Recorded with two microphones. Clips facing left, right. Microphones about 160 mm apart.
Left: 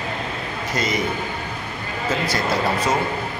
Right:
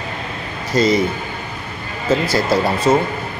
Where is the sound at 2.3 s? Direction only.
25° right (ahead or behind).